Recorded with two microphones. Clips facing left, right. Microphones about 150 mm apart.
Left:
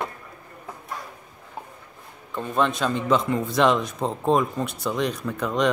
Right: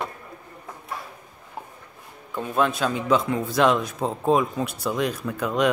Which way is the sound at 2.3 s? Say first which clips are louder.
Even; 5° right (ahead or behind).